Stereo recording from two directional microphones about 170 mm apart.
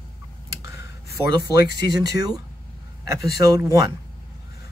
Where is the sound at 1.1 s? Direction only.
70° left (ahead or behind).